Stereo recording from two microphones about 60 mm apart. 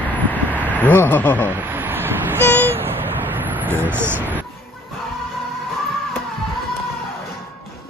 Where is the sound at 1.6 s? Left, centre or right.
Right.